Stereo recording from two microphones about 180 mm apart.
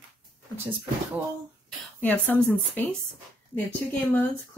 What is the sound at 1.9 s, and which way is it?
Speech, 10° left (ahead or behind).